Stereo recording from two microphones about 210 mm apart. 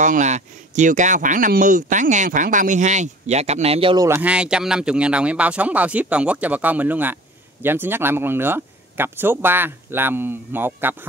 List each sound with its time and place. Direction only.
0.0 s speech: 35° right (ahead or behind); by 11.0 s 10° right (ahead or behind)